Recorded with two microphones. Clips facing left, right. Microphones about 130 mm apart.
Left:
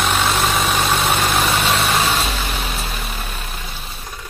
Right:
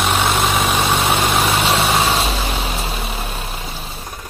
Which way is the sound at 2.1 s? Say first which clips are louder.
Right 2 dB; 35° right (ahead or behind).